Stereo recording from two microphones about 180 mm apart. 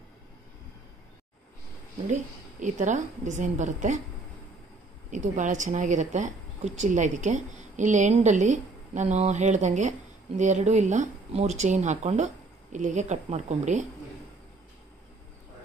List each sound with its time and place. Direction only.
2.6 s a woman's voice: 45° right (ahead or behind)
5.1 s speech: 45° right (ahead or behind)